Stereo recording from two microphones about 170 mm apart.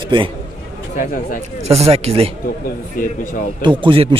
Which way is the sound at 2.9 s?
50° left (ahead or behind).